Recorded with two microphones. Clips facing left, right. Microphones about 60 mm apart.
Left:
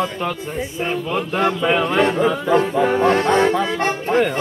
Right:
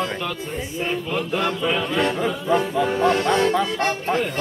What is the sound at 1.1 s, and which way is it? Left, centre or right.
Mantra, left.